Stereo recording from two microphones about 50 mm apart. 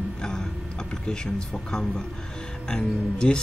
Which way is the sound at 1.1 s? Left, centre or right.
Centre.